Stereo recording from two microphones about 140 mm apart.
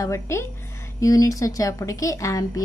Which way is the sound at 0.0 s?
20° left (ahead or behind).